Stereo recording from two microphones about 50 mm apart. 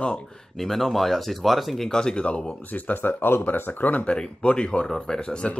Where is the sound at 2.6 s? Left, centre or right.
Left.